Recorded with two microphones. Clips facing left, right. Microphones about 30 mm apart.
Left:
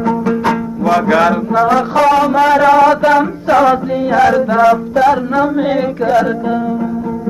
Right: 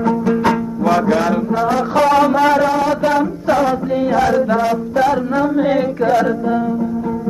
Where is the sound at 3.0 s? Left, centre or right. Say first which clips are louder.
Left 4 dB; left.